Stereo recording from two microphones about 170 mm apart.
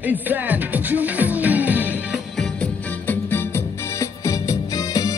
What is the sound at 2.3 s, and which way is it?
Music, 5° left (ahead or behind).